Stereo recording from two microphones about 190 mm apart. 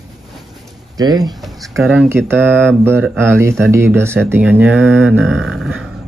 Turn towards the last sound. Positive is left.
turn(degrees=-5)  # may be behind; listen again after turning